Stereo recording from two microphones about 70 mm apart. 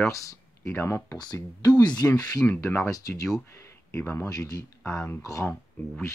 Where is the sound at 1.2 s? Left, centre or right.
Left.